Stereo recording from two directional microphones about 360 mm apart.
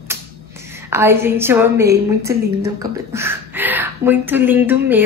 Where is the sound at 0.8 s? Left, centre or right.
Centre.